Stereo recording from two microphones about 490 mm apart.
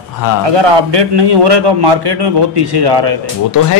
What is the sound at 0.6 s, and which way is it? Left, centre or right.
A man's voice, right.